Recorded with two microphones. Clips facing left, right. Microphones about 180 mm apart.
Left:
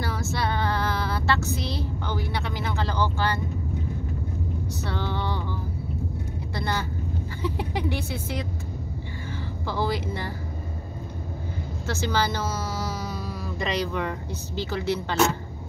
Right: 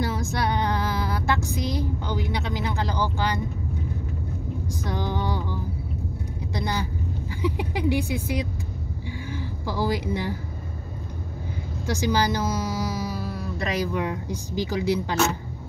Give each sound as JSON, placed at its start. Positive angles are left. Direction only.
{"t": 0.0, "sound": "music", "side_deg": -15}
{"t": 4.8, "sound": "music", "side_deg": -15}
{"t": 6.5, "sound": "speech", "side_deg": -15}
{"t": 9.7, "sound": "speech", "side_deg": -15}
{"t": 11.9, "sound": "speech", "side_deg": -15}